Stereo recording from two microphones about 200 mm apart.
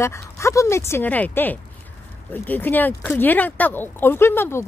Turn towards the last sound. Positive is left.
turn(degrees=10)  # may be behind; listen again after turning